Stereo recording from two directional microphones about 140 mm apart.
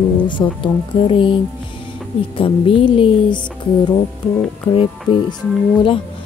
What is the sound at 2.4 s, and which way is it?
Speech, 40° left (ahead or behind).